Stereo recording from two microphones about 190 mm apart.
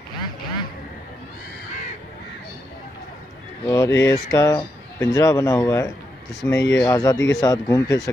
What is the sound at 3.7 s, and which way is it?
Speech, 15° left (ahead or behind).